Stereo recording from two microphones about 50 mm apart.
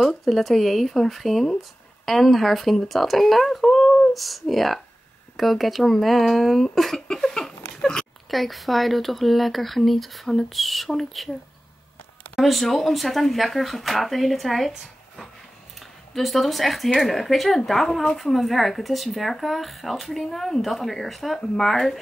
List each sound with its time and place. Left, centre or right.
0.0 s speech: centre
7.1 s a sound: centre
8.3 s speech: centre
12.4 s speech: centre